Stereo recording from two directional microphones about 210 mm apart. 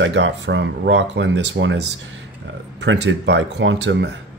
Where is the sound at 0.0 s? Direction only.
60° right (ahead or behind).